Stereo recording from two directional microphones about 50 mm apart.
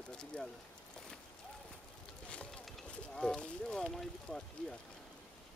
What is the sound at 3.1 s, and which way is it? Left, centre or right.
Speech, centre.